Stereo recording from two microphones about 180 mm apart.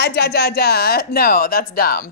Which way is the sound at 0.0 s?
65° left (ahead or behind).